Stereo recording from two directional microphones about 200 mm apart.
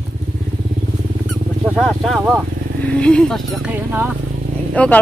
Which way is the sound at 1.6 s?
Centre (ahead or behind).